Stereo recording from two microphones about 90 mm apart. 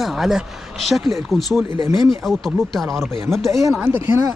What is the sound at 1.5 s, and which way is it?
Speech, 35° right (ahead or behind).